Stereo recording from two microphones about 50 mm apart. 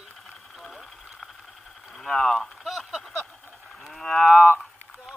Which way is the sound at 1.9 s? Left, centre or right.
Centre.